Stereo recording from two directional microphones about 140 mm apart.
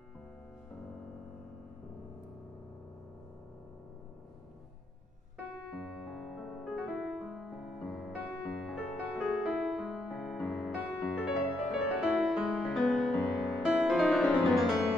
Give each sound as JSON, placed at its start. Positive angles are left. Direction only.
{"t": 5.7, "sound": "music", "side_deg": -5}